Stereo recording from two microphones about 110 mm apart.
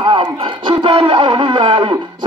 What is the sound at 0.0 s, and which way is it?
A man's voice, 45° right (ahead or behind).